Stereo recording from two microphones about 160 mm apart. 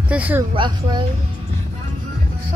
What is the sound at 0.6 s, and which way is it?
Speech, 30° right (ahead or behind).